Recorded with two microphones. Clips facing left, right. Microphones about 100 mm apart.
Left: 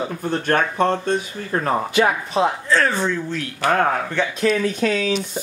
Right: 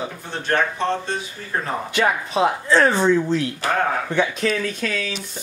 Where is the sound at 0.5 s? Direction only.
50° left (ahead or behind).